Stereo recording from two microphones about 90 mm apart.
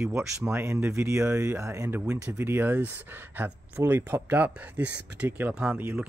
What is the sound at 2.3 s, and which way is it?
Speech, 25° right (ahead or behind).